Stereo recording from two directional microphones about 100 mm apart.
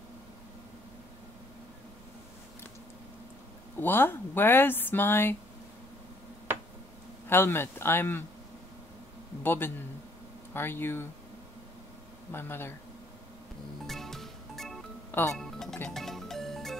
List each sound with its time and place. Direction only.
3.8 s speech: 20° left (ahead or behind)
7.2 s speech: 25° left (ahead or behind)
9.4 s speech: 20° left (ahead or behind)
12.3 s speech: 25° left (ahead or behind)
13.8 s music: 5° left (ahead or behind)
15.0 s music: 20° left (ahead or behind)
15.3 s music: 5° left (ahead or behind)